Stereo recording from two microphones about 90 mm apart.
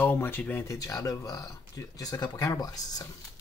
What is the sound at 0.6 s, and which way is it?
Speech, 35° left (ahead or behind).